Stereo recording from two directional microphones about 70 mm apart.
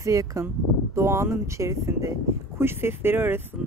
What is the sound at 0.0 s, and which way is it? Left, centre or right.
Speech, right.